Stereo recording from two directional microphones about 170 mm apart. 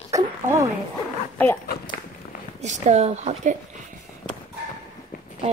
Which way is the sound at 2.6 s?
45° right (ahead or behind).